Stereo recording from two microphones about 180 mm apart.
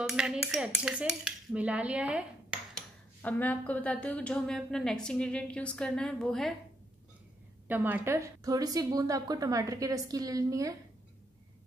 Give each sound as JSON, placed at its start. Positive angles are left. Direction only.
{"t": 0.1, "sound": "a woman's voice", "side_deg": -5}
{"t": 3.2, "sound": "a woman's voice", "side_deg": 10}
{"t": 7.6, "sound": "a woman's voice", "side_deg": -10}